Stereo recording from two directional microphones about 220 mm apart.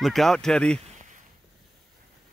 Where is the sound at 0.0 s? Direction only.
Centre (ahead or behind).